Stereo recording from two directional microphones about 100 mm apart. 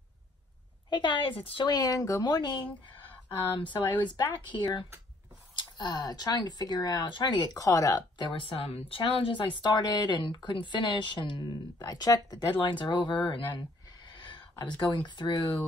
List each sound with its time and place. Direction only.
0.8 s speech: 50° left (ahead or behind)
1.7 s speech: 40° left (ahead or behind)
8.2 s speech: 60° left (ahead or behind)
14.0 s a sound: 55° left (ahead or behind)
14.8 s speech: 50° left (ahead or behind)